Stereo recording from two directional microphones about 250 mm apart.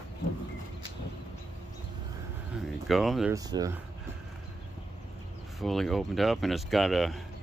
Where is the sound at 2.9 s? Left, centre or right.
Centre.